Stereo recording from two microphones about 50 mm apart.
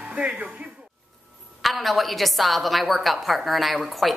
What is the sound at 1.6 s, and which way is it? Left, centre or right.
A woman's voice, centre.